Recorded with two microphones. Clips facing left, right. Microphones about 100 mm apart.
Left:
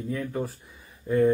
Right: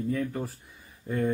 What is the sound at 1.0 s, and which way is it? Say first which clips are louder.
Speech: left 7 dB; 5° left (ahead or behind).